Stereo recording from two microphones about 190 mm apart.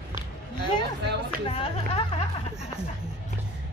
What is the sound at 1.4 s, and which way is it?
Speech, 30° left (ahead or behind).